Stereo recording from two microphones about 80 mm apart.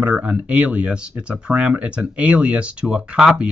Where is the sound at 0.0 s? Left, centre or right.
Centre.